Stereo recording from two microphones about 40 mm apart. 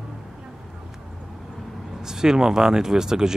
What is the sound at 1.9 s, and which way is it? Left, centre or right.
Speech, centre.